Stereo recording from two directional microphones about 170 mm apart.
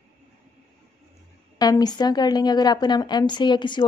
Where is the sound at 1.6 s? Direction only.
25° left (ahead or behind).